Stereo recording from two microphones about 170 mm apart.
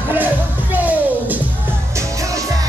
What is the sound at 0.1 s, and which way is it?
Music, 10° right (ahead or behind).